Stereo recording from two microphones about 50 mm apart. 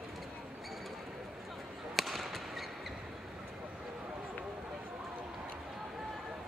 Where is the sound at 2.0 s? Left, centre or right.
Centre.